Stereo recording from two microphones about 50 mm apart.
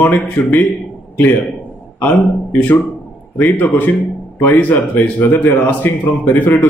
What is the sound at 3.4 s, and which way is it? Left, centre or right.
A man's voice, left.